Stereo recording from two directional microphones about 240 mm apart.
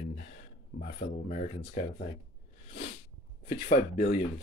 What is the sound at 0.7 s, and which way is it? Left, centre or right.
Speech, left.